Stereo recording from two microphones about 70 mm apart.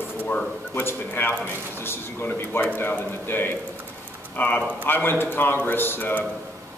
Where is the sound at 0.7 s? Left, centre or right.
Left.